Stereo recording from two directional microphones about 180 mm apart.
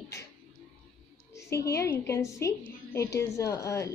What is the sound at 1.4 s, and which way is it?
A woman's voice, 15° left (ahead or behind).